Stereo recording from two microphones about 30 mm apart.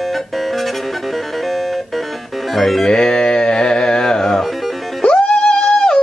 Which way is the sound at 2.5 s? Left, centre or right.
Centre.